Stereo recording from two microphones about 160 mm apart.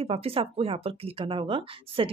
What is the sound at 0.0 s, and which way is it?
Speech, 35° right (ahead or behind).